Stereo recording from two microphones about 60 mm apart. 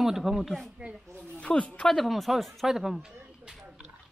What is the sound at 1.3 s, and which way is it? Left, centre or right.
Speech, centre.